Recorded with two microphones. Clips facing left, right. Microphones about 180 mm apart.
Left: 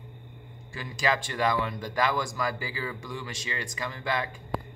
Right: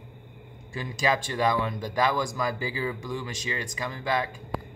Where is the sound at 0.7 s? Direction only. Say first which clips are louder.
Right 2 dB; 20° right (ahead or behind).